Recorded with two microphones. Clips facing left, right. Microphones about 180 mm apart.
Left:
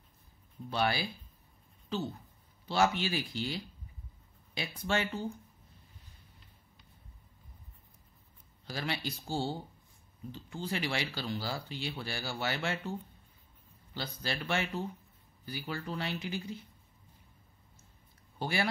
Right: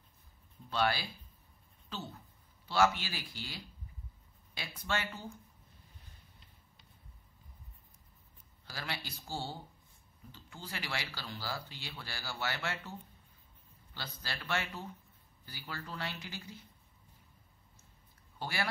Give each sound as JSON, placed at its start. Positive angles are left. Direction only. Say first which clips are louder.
{"t": 0.7, "sound": "speech", "louder": "left 1 dB", "side_deg": 15}
{"t": 2.7, "sound": "speech", "louder": "left 1 dB", "side_deg": 20}
{"t": 8.6, "sound": "speech", "louder": "left 6 dB", "side_deg": 20}
{"t": 13.9, "sound": "speech", "louder": "left 7 dB", "side_deg": 15}
{"t": 18.4, "sound": "speech", "louder": "left 5 dB", "side_deg": 20}